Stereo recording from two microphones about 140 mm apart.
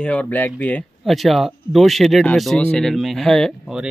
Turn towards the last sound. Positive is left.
turn(degrees=0)  # may be behind; listen again after turning